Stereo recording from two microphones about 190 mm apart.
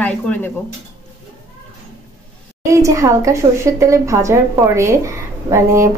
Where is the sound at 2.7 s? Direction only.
15° right (ahead or behind).